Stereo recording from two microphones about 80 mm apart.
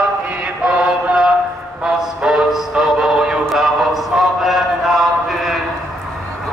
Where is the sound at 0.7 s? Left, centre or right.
Centre.